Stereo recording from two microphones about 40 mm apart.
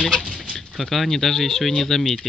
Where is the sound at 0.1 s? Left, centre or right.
Centre.